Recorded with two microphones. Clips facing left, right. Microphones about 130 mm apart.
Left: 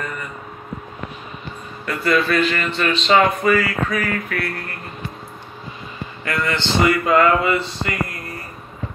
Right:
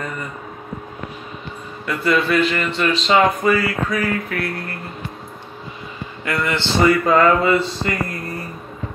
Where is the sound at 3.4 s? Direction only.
30° right (ahead or behind).